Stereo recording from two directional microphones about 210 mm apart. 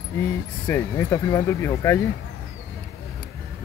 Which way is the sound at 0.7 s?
15° left (ahead or behind).